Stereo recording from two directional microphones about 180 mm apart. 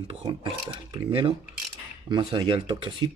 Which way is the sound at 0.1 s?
30° right (ahead or behind).